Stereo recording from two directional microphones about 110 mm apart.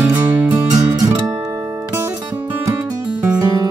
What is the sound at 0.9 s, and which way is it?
Guitar, 35° right (ahead or behind).